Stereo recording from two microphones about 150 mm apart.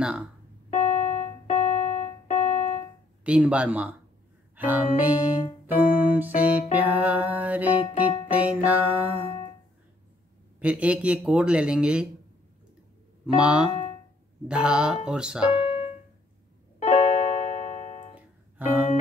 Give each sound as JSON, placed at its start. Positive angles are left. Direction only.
{"t": 0.7, "sound": "keyboard", "side_deg": 45}
{"t": 3.3, "sound": "music", "side_deg": -10}
{"t": 10.6, "sound": "music", "side_deg": -10}
{"t": 13.4, "sound": "music", "side_deg": -5}
{"t": 13.7, "sound": "a sound", "side_deg": 40}
{"t": 14.5, "sound": "music", "side_deg": -5}
{"t": 15.0, "sound": "speech", "side_deg": -5}
{"t": 15.6, "sound": "music", "side_deg": 45}
{"t": 18.6, "sound": "music", "side_deg": -10}